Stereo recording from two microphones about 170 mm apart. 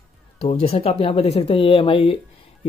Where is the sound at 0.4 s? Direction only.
35° left (ahead or behind).